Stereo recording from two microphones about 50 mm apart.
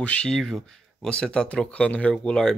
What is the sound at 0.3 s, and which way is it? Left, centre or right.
Speech, centre.